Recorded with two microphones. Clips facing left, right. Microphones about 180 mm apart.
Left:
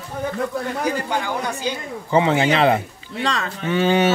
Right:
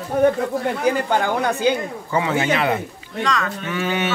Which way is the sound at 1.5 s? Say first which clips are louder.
Right 7 dB; 60° right (ahead or behind).